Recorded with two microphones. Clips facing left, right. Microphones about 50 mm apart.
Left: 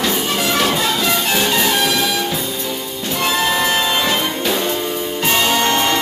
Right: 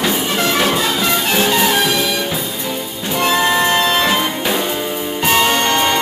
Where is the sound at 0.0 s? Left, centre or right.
Centre.